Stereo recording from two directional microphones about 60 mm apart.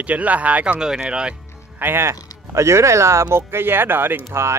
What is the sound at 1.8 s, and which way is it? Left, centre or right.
Speech, right.